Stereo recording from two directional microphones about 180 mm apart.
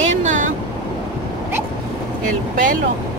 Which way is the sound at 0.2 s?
45° right (ahead or behind).